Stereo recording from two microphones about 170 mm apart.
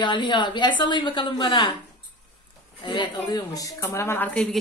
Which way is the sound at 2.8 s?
25° left (ahead or behind).